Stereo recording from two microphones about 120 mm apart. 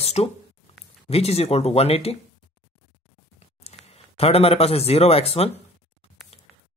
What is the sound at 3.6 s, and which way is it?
Speech, 60° left (ahead or behind).